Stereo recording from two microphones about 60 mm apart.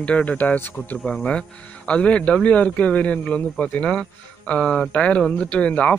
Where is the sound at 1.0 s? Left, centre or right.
Centre.